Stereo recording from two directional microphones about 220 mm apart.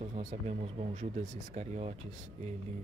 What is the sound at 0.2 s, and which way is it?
Speech, 30° right (ahead or behind).